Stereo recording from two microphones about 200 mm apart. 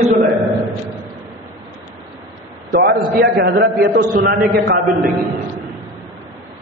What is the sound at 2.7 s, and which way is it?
A man's voice, 45° right (ahead or behind).